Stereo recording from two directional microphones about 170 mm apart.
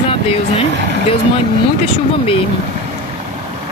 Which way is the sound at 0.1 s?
35° left (ahead or behind).